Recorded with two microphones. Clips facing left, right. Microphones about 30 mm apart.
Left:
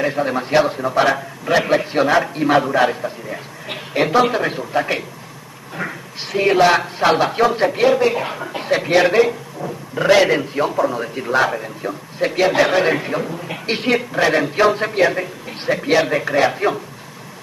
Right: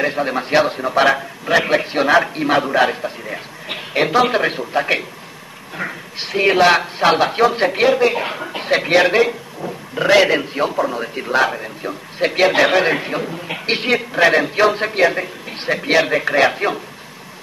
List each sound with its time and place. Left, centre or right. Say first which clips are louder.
0.0 s a man's voice: even; right
4.3 s speech: right 2 dB; right
5.8 s a man's voice: right 1 dB; centre
7.6 s speech: even; right
7.9 s a man's voice: right 1 dB; right
10.7 s a man's voice: left 1 dB; centre
11.0 s a man's voice: even; right
12.2 s speech: right 1 dB; right
12.8 s a man's voice: even; right
13.8 s a man's voice: right 2 dB; centre